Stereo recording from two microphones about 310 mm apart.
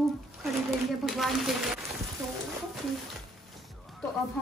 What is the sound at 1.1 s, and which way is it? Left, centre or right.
Speech, centre.